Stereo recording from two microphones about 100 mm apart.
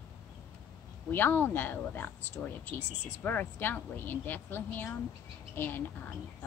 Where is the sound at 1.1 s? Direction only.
20° left (ahead or behind).